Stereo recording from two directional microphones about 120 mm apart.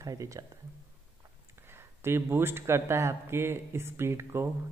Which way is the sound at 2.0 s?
20° right (ahead or behind).